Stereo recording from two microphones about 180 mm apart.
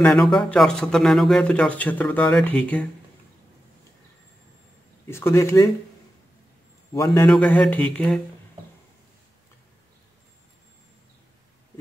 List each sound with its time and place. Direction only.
0.0 s speech: centre (ahead or behind)
5.0 s speech: 15° left (ahead or behind)
6.9 s a man's voice: 20° left (ahead or behind)
7.2 s speech: 5° left (ahead or behind)